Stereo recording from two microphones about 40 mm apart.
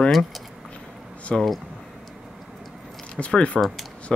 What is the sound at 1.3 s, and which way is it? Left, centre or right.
Speech, centre.